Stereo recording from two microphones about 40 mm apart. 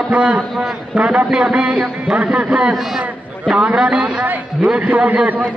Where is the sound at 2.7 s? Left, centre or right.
Centre.